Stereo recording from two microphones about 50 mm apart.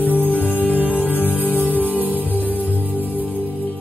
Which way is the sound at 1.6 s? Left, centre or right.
Right.